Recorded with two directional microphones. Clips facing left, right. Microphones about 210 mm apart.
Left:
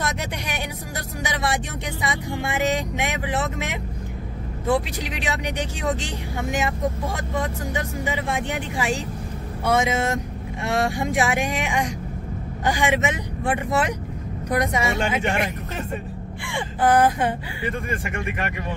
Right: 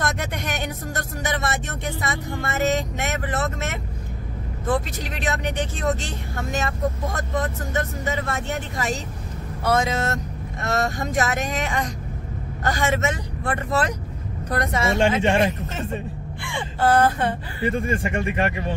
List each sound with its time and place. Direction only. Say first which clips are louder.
0.5 s vehicle: right 2 dB; 10° left (ahead or behind)
4.6 s speech: left 2 dB; 10° left (ahead or behind)
15.2 s speech: right 5 dB; 30° right (ahead or behind)
16.4 s speech: even; 15° left (ahead or behind)
17.8 s speech: right 4 dB; 30° right (ahead or behind)